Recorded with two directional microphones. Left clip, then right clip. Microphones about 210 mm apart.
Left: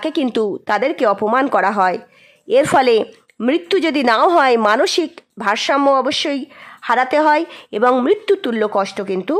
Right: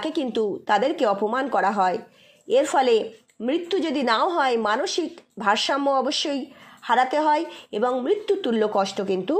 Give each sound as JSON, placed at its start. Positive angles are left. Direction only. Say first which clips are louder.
{"t": 0.0, "sound": "speech", "louder": "left 6 dB", "side_deg": 25}